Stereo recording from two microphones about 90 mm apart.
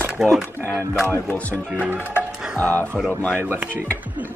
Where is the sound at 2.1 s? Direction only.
20° left (ahead or behind).